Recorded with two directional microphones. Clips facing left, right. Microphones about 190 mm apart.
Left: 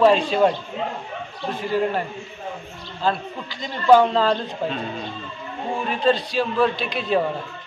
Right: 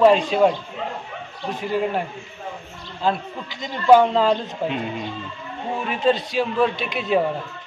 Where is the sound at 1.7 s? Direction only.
10° right (ahead or behind).